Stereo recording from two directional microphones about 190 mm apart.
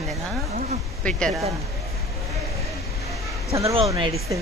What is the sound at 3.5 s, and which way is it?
Speech, 15° right (ahead or behind).